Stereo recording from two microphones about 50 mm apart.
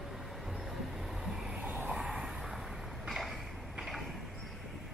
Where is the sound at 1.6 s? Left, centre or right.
Right.